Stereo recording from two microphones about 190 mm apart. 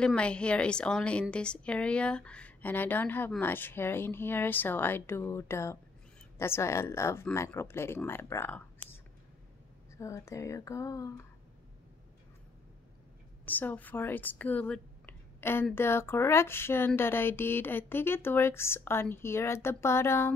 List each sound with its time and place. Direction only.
0.0 s a woman's voice: 5° left (ahead or behind)
9.9 s speech: 15° left (ahead or behind)
13.5 s speech: 10° left (ahead or behind)